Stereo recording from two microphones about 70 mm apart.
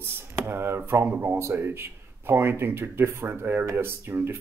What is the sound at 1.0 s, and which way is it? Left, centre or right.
Speech, centre.